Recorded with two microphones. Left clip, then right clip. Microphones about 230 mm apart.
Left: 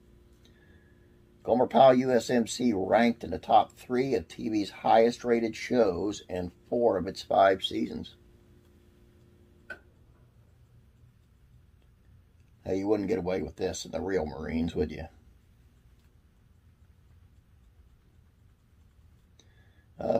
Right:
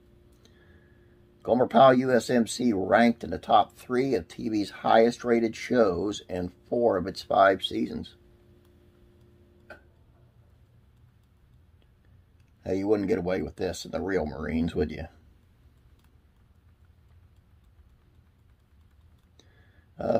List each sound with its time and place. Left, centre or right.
1.4 s speech: right
12.6 s speech: right
20.0 s a sound: right